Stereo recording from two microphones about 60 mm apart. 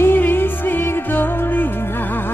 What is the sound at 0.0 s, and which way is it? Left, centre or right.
Music, left.